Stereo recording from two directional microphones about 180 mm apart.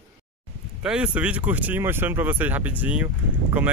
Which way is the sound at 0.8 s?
5° right (ahead or behind).